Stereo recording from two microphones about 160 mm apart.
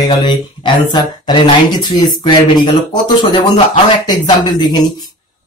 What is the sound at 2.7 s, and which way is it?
Speech, 30° left (ahead or behind).